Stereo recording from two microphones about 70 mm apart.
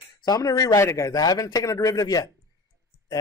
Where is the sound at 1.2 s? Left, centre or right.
Left.